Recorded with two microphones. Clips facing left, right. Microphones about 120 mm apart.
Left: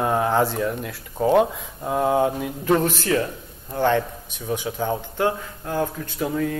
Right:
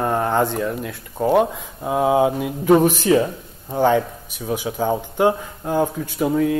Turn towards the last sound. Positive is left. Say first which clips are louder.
# right 6 dB
turn(degrees=-5)  # may be behind; listen again after turning